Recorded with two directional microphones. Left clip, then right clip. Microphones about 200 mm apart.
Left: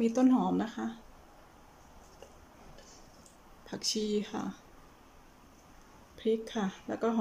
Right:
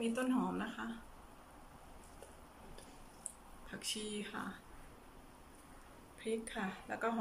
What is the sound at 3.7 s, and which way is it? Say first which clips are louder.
Speech: left 10 dB; 30° left (ahead or behind).